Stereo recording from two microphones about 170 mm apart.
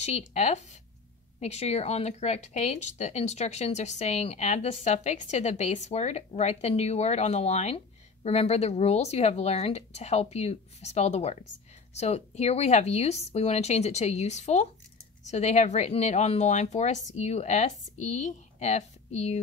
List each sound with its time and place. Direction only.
0.0 s a woman's voice: 40° left (ahead or behind)